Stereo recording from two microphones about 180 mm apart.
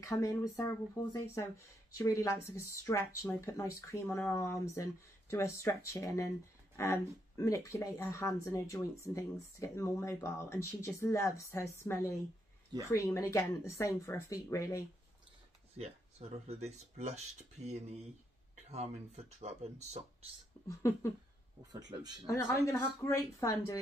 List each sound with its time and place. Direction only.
0.0 s speech: 15° left (ahead or behind)
15.8 s speech: 35° right (ahead or behind)
20.6 s speech: 15° left (ahead or behind)
21.7 s speech: 20° right (ahead or behind)
22.3 s speech: 15° left (ahead or behind)